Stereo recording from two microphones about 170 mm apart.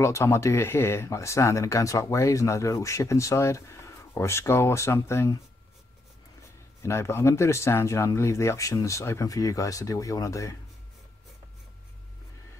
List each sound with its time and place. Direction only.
0.0 s speech: 15° left (ahead or behind)
6.8 s speech: 15° left (ahead or behind)